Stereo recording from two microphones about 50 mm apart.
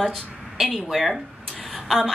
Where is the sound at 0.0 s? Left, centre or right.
Centre.